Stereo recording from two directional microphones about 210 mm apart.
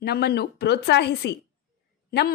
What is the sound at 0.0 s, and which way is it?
Speech, 50° left (ahead or behind).